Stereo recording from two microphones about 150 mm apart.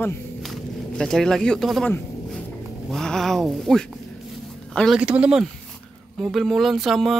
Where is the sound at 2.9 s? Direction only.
Centre (ahead or behind).